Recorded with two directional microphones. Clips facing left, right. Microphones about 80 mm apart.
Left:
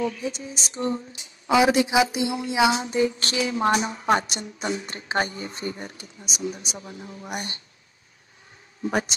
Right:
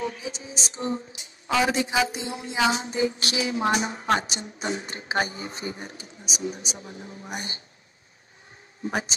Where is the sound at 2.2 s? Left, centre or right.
Left.